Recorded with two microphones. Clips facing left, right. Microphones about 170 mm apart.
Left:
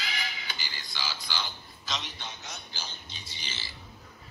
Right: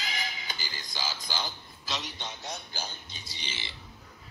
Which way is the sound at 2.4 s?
40° right (ahead or behind).